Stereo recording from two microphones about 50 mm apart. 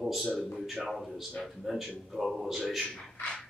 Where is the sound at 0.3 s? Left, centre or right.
Left.